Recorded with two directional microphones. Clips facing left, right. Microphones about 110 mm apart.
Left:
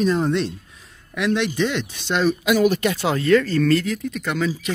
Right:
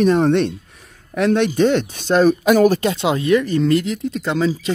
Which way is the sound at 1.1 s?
45° right (ahead or behind).